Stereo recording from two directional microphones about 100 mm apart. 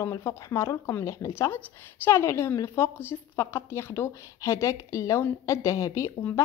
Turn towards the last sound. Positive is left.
turn(degrees=35)  # may be behind; listen again after turning